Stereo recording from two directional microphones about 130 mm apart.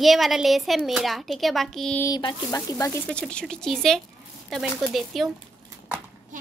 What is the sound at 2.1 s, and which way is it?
Speech, 30° left (ahead or behind).